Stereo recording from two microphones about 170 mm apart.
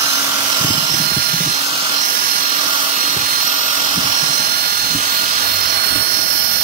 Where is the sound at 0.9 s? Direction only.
65° right (ahead or behind).